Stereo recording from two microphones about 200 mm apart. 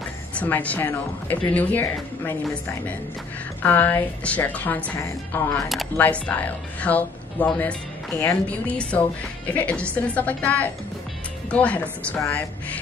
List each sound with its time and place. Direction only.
0.3 s a woman's voice: 5° left (ahead or behind)
3.6 s a woman's voice: 10° left (ahead or behind)